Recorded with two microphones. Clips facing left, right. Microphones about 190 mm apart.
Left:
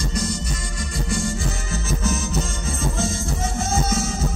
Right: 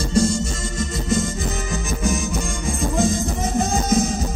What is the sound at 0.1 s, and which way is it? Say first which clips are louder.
Music: right 7 dB; 30° right (ahead or behind).